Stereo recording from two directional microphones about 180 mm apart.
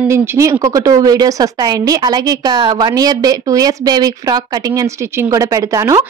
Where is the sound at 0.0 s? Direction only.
15° right (ahead or behind).